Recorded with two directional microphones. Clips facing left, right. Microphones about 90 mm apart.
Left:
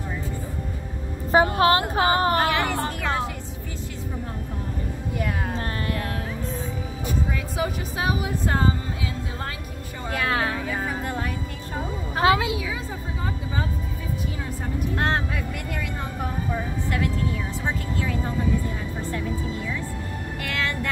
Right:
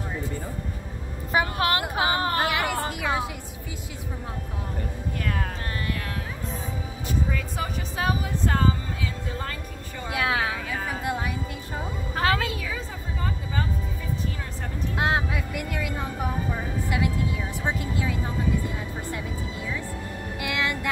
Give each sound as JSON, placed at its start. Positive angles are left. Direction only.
{"t": 1.3, "sound": "speech", "side_deg": 30}
{"t": 2.4, "sound": "a sound", "side_deg": -10}
{"t": 7.5, "sound": "speech", "side_deg": 10}
{"t": 10.1, "sound": "a woman's voice", "side_deg": -5}
{"t": 10.9, "sound": "music", "side_deg": -10}
{"t": 12.2, "sound": "a woman's voice", "side_deg": 15}
{"t": 15.0, "sound": "speech", "side_deg": -10}
{"t": 20.4, "sound": "speech", "side_deg": -15}